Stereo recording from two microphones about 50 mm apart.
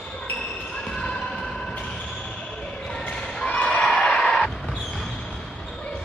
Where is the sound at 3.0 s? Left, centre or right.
Left.